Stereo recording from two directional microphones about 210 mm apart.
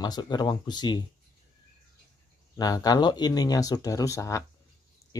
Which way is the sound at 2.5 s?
15° left (ahead or behind).